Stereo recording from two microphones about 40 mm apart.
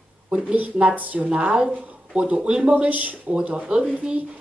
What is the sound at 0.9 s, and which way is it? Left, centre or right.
Speech, right.